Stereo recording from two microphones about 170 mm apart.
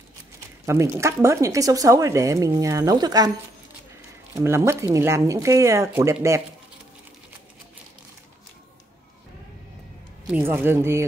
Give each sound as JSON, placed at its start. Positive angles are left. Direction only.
{"t": 0.7, "sound": "speech", "side_deg": -15}
{"t": 4.4, "sound": "speech", "side_deg": -15}
{"t": 10.2, "sound": "speech", "side_deg": -10}